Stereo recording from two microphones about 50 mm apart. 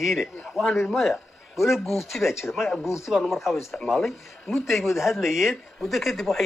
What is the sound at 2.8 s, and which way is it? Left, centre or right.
Speech, left.